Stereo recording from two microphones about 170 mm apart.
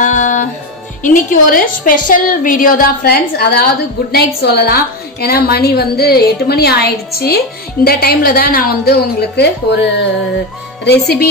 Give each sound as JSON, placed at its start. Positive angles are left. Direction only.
{"t": 0.0, "sound": "music", "side_deg": 50}
{"t": 1.0, "sound": "a woman's voice", "side_deg": 50}
{"t": 10.9, "sound": "speech", "side_deg": 70}